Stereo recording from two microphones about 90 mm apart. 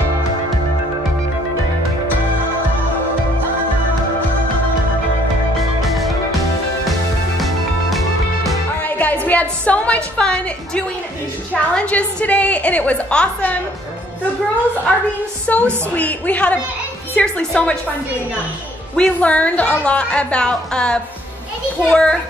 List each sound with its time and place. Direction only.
5.8 s music: centre (ahead or behind)
7.3 s music: centre (ahead or behind)
8.8 s a woman's voice: 20° left (ahead or behind)
14.9 s a woman's voice: 15° left (ahead or behind)
18.9 s a woman's voice: 15° left (ahead or behind)